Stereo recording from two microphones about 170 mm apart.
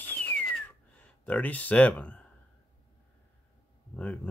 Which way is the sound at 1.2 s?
10° left (ahead or behind).